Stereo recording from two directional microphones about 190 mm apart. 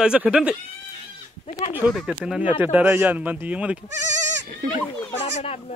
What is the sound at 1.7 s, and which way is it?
Speech, 5° right (ahead or behind).